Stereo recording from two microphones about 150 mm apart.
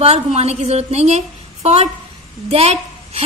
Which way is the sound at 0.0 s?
45° right (ahead or behind).